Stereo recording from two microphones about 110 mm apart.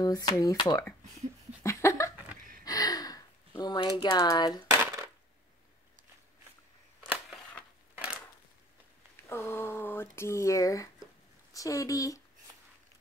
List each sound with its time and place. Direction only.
0.0 s speech: 35° left (ahead or behind)
1.6 s laughter: 25° left (ahead or behind)
2.6 s gasp: 35° left (ahead or behind)
3.9 s speech: 40° left (ahead or behind)
7.0 s a sound: 5° right (ahead or behind)
7.9 s crushing: 15° right (ahead or behind)
9.3 s speech: 20° left (ahead or behind)